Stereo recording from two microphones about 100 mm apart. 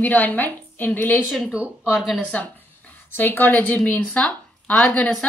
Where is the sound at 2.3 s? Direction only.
15° left (ahead or behind).